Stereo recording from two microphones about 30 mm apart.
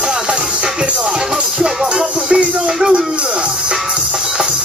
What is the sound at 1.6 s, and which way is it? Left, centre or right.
Music, right.